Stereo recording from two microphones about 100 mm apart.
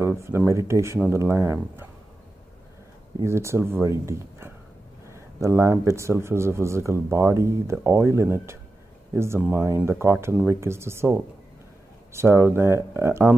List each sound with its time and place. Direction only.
0.2 s speech: 25° right (ahead or behind)
3.3 s speech: 25° right (ahead or behind)